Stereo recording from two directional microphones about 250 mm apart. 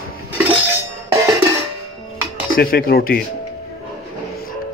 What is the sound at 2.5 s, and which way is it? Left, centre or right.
Speech, left.